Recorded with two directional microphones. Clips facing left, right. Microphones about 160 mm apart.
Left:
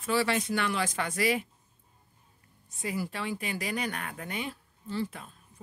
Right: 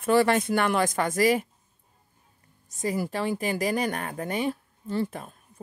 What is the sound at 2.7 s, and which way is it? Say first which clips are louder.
Speech: right 6 dB; 40° right (ahead or behind).